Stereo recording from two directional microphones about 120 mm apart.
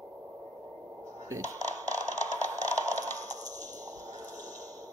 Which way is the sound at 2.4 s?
30° right (ahead or behind).